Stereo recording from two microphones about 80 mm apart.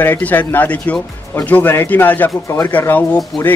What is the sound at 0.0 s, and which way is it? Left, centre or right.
Speech, left.